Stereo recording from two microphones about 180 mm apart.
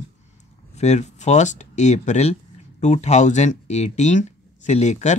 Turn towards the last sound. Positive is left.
turn(degrees=40)  # may be behind; listen again after turning